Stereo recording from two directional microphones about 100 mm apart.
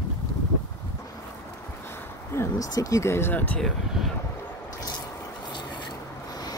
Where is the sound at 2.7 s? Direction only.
35° left (ahead or behind); by 3.6 s 15° left (ahead or behind).